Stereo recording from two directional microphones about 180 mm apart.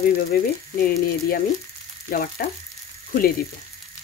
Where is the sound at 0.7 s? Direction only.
55° left (ahead or behind).